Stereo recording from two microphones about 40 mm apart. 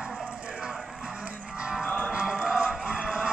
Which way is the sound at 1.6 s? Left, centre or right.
Centre.